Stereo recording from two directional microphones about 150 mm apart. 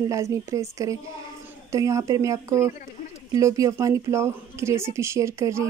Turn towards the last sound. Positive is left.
turn(degrees=-20)  # may be behind; listen again after turning